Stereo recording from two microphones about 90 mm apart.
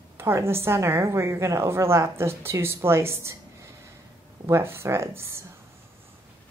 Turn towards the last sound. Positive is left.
turn(degrees=-30)  # may be behind; listen again after turning